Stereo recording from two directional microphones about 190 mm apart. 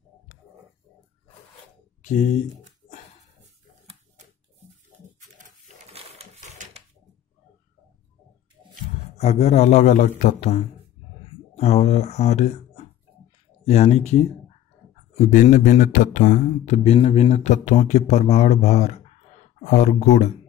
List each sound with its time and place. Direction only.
2.0 s speech: 40° left (ahead or behind)
6.1 s sewing machine: 35° right (ahead or behind)
9.1 s speech: 35° left (ahead or behind)